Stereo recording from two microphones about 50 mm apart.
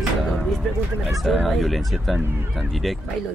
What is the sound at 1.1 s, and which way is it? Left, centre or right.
Speech, centre.